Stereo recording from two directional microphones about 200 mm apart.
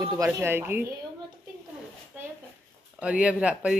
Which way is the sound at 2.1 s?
10° right (ahead or behind).